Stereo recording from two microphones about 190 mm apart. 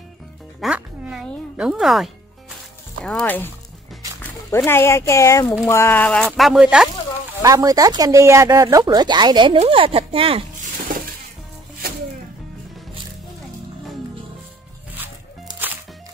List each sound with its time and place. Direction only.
0.6 s music: 5° right (ahead or behind)
3.1 s speech: 5° left (ahead or behind)
7.4 s speech: 20° right (ahead or behind)